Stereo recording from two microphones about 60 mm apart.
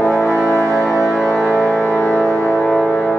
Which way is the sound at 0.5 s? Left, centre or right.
Right.